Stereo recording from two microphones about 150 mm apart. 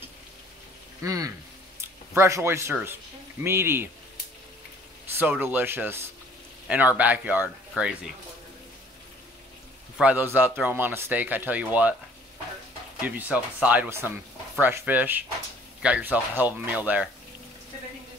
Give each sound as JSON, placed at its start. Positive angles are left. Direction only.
{"t": 1.0, "sound": "speech", "side_deg": -20}
{"t": 5.4, "sound": "speech", "side_deg": -15}
{"t": 9.9, "sound": "speech", "side_deg": -10}
{"t": 13.0, "sound": "speech", "side_deg": -10}